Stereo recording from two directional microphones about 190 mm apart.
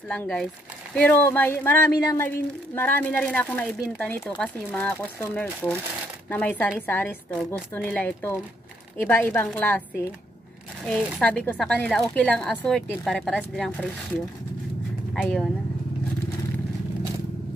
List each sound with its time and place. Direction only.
0.1 s speech: 5° left (ahead or behind)
15.1 s speech: 5° left (ahead or behind)